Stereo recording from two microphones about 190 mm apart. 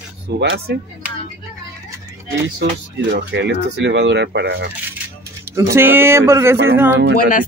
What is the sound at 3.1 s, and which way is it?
Speech, 65° right (ahead or behind).